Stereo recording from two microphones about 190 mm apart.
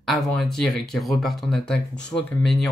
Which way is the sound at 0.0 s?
Centre (ahead or behind).